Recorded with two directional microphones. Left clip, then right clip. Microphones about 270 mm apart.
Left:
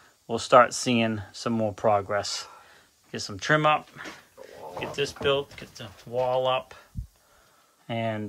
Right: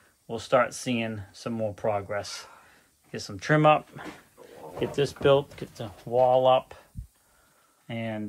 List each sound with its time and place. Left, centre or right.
0.3 s speech: centre
4.7 s speech: centre
6.0 s speech: centre
7.8 s speech: centre